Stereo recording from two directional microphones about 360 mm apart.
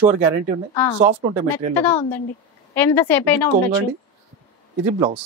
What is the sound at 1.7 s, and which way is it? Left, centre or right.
A woman's voice, centre.